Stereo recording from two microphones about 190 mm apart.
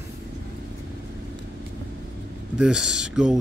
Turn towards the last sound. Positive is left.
turn(degrees=-5)  # may be behind; listen again after turning